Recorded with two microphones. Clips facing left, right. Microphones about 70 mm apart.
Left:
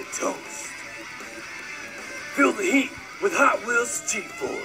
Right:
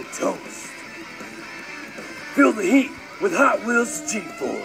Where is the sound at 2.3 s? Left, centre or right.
Right.